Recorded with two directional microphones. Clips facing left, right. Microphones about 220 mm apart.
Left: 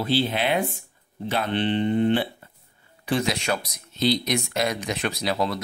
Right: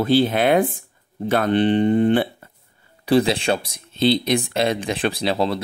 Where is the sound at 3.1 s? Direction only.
35° right (ahead or behind).